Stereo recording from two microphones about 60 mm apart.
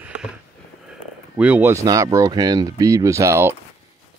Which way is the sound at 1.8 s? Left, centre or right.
Right.